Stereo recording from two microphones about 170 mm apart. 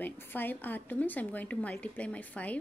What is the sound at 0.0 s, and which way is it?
A woman's voice, 10° left (ahead or behind).